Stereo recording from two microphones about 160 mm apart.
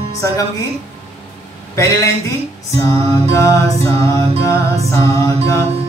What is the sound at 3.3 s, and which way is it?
Music, 20° left (ahead or behind).